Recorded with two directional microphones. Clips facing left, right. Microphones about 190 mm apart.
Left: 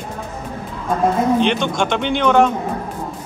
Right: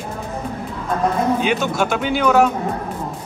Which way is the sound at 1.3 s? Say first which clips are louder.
Left 2 dB; 5° right (ahead or behind).